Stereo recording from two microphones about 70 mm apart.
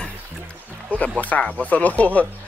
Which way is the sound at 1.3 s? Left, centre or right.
Centre.